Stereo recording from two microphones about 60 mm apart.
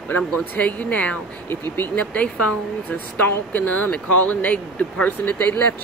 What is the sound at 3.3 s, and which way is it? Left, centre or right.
Speech, left.